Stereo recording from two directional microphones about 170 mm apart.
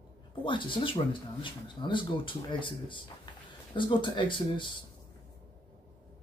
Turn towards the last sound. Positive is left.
turn(degrees=30)  # may be behind; listen again after turning